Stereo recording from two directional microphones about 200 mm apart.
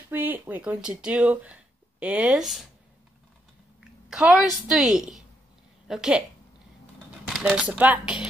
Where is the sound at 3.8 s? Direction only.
5° right (ahead or behind).